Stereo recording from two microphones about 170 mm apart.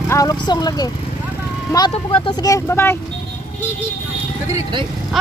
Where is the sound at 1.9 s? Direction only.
30° left (ahead or behind); by 3.0 s 15° left (ahead or behind).